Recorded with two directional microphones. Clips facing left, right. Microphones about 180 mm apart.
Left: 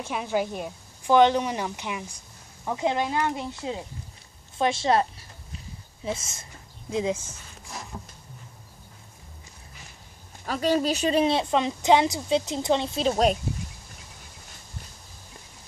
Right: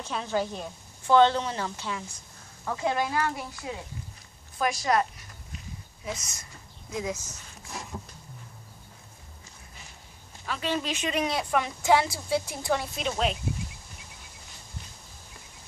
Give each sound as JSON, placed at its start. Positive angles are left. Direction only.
{"t": 0.0, "sound": "a woman's voice", "side_deg": 15}
{"t": 6.0, "sound": "speech", "side_deg": 25}
{"t": 10.4, "sound": "speech", "side_deg": 40}